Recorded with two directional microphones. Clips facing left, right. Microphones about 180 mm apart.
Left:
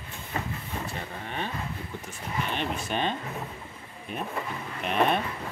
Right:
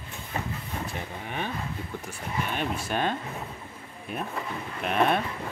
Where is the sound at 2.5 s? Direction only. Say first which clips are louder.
Right 1 dB; 10° right (ahead or behind).